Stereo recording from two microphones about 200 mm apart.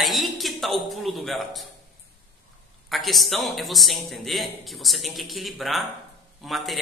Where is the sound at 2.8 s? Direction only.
Centre (ahead or behind).